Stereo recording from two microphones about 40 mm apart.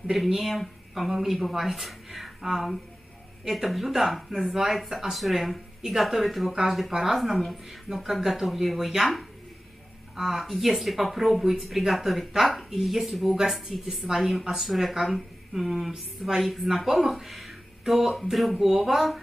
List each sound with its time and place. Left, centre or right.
0.0 s speech: centre